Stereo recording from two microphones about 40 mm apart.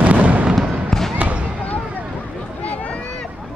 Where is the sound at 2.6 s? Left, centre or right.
Left.